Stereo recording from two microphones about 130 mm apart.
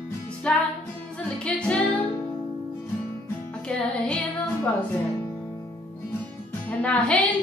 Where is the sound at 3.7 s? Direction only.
5° left (ahead or behind).